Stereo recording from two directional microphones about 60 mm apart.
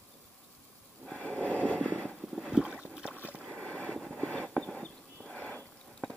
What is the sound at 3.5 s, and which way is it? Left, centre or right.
Vehicle, centre.